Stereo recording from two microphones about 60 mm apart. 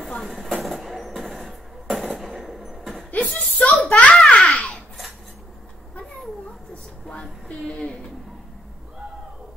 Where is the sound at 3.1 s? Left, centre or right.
Left.